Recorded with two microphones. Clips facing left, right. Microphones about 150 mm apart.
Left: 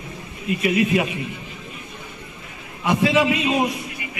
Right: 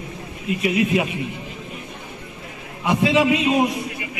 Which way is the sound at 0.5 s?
20° right (ahead or behind).